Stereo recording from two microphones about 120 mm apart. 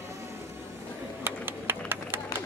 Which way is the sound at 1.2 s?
15° right (ahead or behind).